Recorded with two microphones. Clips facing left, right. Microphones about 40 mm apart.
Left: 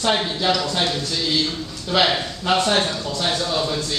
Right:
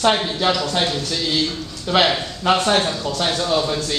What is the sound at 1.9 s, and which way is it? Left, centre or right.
Speech, centre.